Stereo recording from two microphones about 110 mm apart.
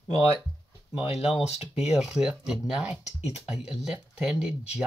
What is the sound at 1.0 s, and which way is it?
Speech, 65° left (ahead or behind).